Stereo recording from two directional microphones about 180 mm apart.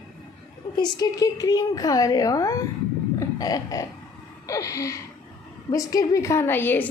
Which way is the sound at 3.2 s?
20° left (ahead or behind).